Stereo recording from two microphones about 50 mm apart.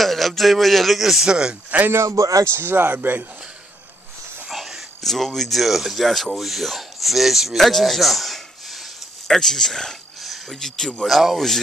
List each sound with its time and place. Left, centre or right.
0.0 s speech: centre
1.3 s speech: centre
1.9 s speech: right
2.5 s speech: right
4.5 s a sound: centre
5.0 s speech: centre
11.1 s speech: centre